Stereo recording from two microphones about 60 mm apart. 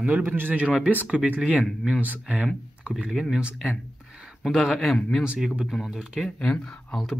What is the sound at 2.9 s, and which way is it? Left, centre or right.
Speech, centre.